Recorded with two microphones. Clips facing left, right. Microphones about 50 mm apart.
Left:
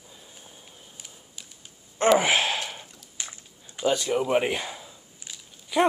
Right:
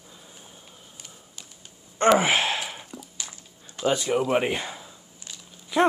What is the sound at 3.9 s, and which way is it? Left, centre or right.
Speech, centre.